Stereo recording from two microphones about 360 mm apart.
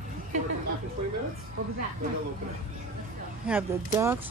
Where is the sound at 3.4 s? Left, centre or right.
Centre.